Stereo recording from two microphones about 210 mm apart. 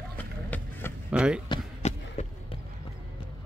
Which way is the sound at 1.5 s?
30° left (ahead or behind).